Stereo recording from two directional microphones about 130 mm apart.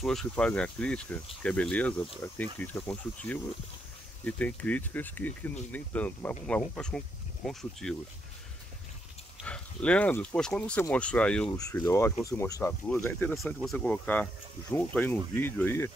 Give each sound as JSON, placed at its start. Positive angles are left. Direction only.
{"t": 0.0, "sound": "speech", "side_deg": 5}
{"t": 9.4, "sound": "speech", "side_deg": 10}
{"t": 11.8, "sound": "speech", "side_deg": 20}
{"t": 13.3, "sound": "speech", "side_deg": 0}